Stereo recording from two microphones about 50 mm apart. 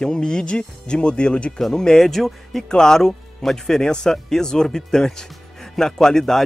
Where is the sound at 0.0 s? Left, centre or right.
Centre.